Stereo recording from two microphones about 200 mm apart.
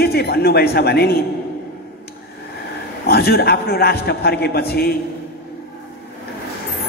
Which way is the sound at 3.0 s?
50° left (ahead or behind).